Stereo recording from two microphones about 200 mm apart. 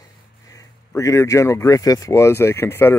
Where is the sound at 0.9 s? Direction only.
15° left (ahead or behind).